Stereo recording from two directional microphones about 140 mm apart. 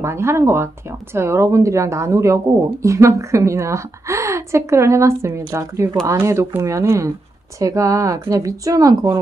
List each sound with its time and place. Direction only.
0.0 s speech: 20° right (ahead or behind)